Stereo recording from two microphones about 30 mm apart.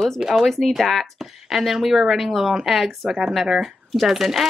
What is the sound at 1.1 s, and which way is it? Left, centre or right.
Speech, centre.